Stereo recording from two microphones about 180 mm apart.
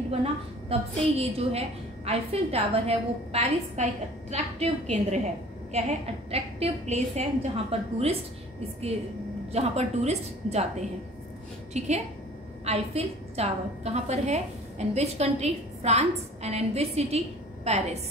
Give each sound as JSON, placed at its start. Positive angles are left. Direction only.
{"t": 0.1, "sound": "a woman's voice", "side_deg": -35}
{"t": 9.5, "sound": "a woman's voice", "side_deg": -35}